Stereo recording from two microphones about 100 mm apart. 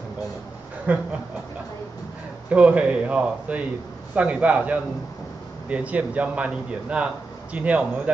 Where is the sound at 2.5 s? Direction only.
10° right (ahead or behind).